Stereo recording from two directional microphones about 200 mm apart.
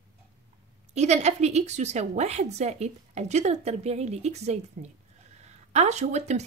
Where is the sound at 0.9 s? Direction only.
35° right (ahead or behind).